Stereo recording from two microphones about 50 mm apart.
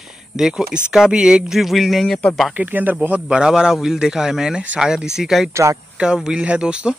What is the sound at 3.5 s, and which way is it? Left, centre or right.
Speech, centre.